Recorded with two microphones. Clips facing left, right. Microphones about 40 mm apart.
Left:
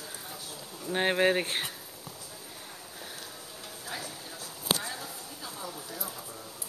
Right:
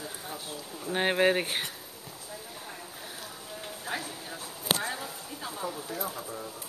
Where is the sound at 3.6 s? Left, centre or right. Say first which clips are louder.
Right 4 dB; right.